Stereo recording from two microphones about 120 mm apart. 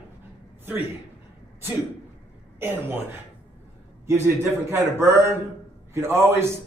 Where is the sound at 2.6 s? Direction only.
20° right (ahead or behind).